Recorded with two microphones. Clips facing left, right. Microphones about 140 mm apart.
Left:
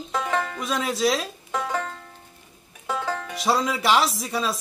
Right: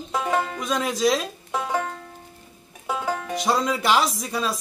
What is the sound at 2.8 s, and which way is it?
Music, 10° right (ahead or behind).